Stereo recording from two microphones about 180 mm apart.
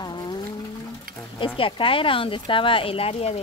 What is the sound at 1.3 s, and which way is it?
Speech, 30° left (ahead or behind).